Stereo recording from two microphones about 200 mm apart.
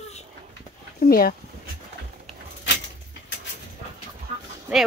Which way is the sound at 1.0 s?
45° left (ahead or behind).